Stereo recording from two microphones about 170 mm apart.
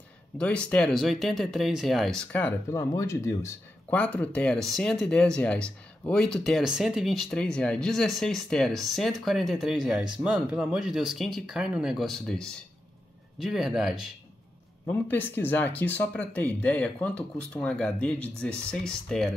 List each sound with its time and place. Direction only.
0.4 s speech: 5° left (ahead or behind)
14.9 s speech: 10° left (ahead or behind)